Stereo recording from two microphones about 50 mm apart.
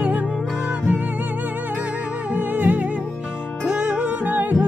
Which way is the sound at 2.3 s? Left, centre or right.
Right.